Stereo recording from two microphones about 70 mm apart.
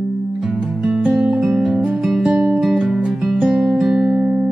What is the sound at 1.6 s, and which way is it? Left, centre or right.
Music, centre.